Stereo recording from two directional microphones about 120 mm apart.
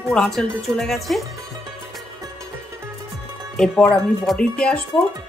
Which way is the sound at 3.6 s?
5° left (ahead or behind).